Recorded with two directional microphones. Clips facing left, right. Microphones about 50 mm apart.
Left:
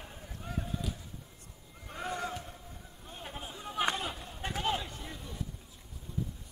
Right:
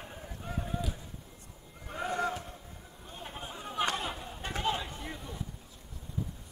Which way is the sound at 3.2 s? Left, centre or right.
Centre.